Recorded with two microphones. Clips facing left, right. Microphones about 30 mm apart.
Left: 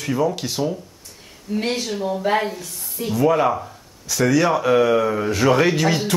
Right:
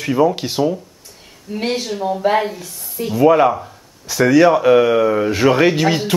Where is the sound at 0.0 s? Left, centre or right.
Centre.